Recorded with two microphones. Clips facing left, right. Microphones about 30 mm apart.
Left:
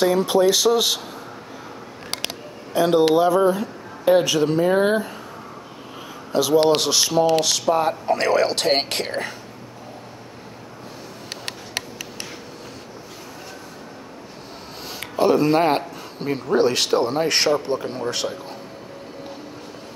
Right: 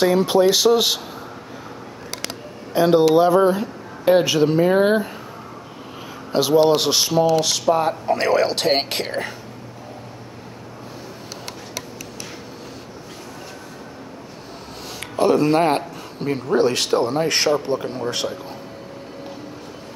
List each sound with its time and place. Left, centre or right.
0.0 s speech: centre
2.8 s speech: right
6.3 s speech: right
7.4 s speech: centre
11.4 s tick-tock: left
14.9 s a sound: centre
16.5 s speech: centre